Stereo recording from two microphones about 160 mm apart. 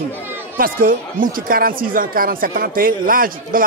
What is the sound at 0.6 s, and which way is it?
Speech, 60° right (ahead or behind).